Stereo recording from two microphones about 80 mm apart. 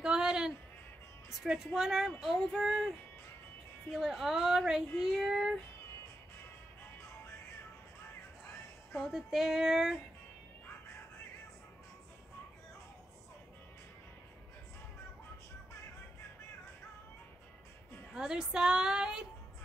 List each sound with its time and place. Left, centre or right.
0.0 s a sound: centre
1.4 s speech: centre
3.9 s speech: centre
9.0 s speech: centre
18.1 s speech: centre